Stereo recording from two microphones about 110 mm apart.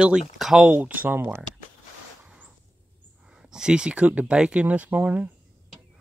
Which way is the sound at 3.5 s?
5° right (ahead or behind).